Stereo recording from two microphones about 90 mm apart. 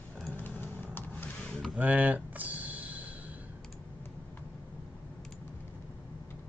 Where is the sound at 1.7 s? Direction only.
15° right (ahead or behind).